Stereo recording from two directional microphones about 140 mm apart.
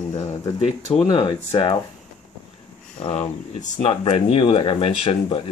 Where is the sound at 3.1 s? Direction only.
55° left (ahead or behind).